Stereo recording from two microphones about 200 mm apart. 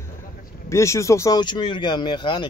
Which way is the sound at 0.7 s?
15° left (ahead or behind).